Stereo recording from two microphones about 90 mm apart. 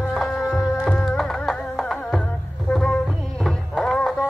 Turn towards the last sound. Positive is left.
turn(degrees=5)  # may be behind; listen again after turning